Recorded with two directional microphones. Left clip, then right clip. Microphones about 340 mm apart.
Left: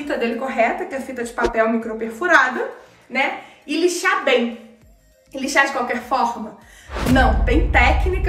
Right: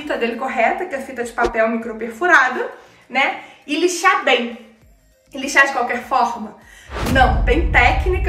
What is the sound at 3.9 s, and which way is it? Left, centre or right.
A woman's voice, centre.